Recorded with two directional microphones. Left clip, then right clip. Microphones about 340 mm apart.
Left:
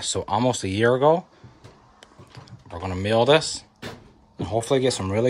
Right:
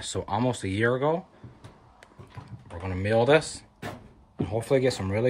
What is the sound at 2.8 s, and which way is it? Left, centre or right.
Speech, centre.